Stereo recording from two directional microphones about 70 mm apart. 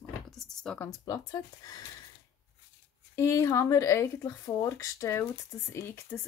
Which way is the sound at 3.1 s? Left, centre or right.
Left.